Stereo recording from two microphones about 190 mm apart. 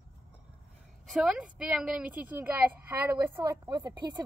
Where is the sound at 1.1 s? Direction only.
5° right (ahead or behind).